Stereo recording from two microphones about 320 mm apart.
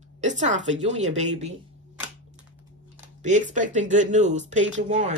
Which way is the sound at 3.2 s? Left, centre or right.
Right.